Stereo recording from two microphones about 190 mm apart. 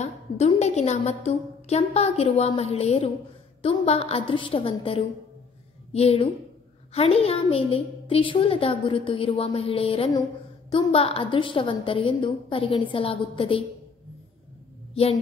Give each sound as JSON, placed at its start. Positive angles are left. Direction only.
{"t": 0.0, "sound": "a woman's voice", "side_deg": 35}